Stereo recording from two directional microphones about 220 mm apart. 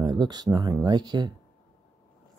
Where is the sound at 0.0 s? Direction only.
20° right (ahead or behind).